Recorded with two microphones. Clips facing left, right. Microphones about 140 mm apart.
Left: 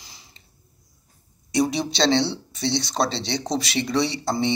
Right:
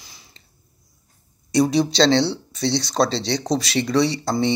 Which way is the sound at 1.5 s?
20° left (ahead or behind).